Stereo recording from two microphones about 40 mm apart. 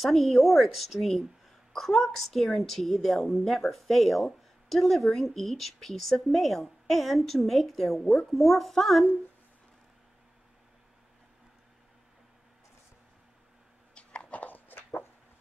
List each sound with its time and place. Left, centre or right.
0.0 s speech: centre
13.9 s dog: left
14.4 s a sound: left